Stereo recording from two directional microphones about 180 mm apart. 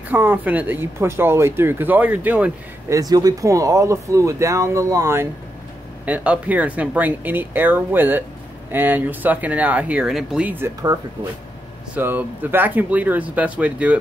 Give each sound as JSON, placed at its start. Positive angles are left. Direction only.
{"t": 0.1, "sound": "speech", "side_deg": -10}
{"t": 3.0, "sound": "speech", "side_deg": -20}